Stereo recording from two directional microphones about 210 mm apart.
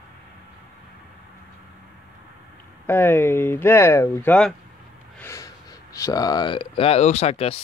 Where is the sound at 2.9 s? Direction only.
10° left (ahead or behind).